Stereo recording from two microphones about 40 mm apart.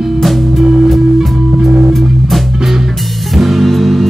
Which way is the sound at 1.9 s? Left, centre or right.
Centre.